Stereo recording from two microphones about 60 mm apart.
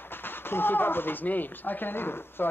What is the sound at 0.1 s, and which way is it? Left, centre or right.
Speech, left.